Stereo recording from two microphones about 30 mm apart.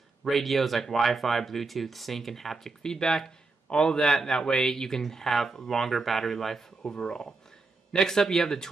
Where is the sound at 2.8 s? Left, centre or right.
Left.